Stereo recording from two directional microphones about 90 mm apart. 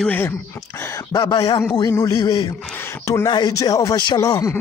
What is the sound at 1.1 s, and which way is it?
Speech, 55° left (ahead or behind).